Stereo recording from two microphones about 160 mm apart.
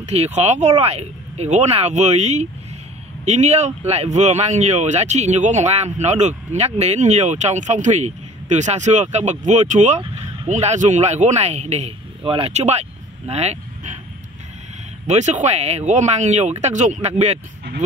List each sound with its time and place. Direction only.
0.0 s speech: 45° right (ahead or behind)
15.0 s speech: 45° right (ahead or behind)